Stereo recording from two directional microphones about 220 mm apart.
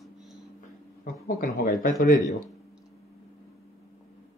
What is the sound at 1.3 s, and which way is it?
Speech, 40° left (ahead or behind).